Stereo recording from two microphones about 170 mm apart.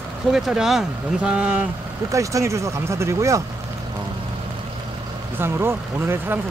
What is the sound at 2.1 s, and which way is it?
Speech, 20° right (ahead or behind).